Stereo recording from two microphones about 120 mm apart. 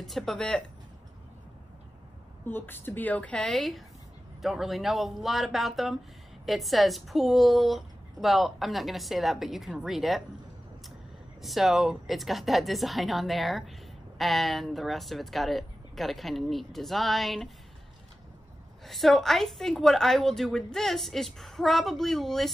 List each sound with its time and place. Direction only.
0.0 s a woman's voice: centre (ahead or behind)
2.4 s a woman's voice: 15° left (ahead or behind); by 10.2 s centre (ahead or behind)
11.4 s a woman's voice: centre (ahead or behind)
18.9 s a woman's voice: centre (ahead or behind)